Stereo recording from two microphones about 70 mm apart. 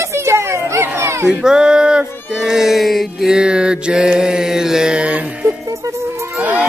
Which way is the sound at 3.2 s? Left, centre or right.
Centre.